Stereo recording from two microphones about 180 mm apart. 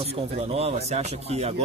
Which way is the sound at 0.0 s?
35° right (ahead or behind).